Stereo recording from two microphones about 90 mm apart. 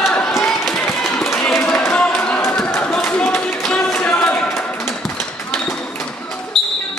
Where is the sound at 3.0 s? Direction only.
20° left (ahead or behind).